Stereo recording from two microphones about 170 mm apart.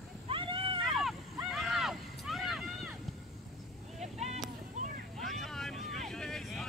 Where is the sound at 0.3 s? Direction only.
30° right (ahead or behind).